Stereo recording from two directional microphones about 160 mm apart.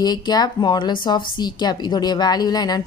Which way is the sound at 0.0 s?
25° left (ahead or behind).